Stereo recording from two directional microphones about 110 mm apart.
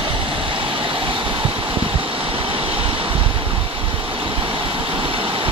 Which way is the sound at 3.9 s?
50° right (ahead or behind).